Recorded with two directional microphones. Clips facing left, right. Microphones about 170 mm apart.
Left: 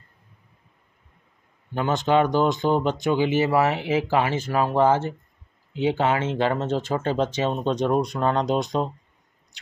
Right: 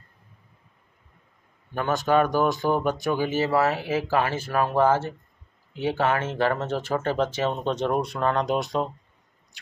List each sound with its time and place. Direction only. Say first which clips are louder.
1.7 s speech: left 1 dB; 20° left (ahead or behind)